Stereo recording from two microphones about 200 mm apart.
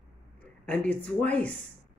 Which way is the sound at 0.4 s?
5° left (ahead or behind).